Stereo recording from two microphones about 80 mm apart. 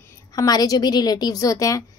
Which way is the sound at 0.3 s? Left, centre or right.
Left.